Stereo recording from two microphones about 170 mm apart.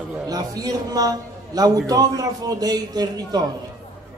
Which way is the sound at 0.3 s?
20° right (ahead or behind).